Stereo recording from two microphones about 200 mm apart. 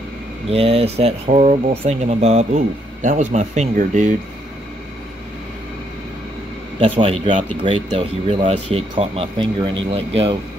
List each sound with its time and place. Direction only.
0.5 s speech: 30° right (ahead or behind)
6.8 s speech: 25° right (ahead or behind)